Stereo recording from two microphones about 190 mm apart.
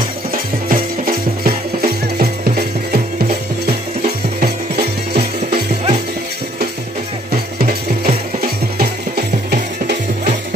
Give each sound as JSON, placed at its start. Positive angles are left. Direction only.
{"t": 0.3, "sound": "music", "side_deg": -50}
{"t": 5.1, "sound": "music", "side_deg": -35}
{"t": 8.4, "sound": "music", "side_deg": -55}